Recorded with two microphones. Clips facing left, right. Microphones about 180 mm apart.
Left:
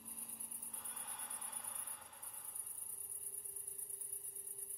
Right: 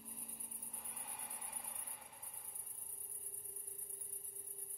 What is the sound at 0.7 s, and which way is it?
Cricket, 10° right (ahead or behind).